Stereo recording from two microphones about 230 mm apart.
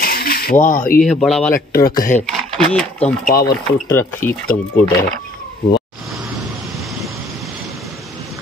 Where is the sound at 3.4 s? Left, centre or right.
Centre.